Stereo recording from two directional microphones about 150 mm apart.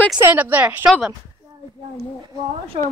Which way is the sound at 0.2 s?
10° right (ahead or behind).